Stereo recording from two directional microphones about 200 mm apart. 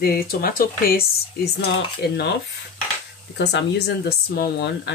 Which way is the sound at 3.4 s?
60° left (ahead or behind).